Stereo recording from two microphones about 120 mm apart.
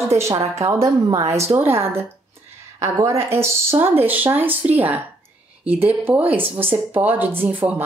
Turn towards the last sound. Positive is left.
turn(degrees=-15)  # may be behind; listen again after turning